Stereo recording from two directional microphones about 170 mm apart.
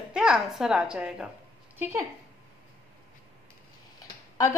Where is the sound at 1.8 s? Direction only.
15° right (ahead or behind).